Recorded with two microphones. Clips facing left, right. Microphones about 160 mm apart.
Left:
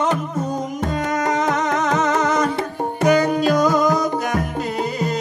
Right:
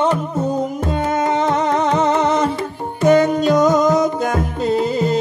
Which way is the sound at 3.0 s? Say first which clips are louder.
Right 3 dB; 25° right (ahead or behind).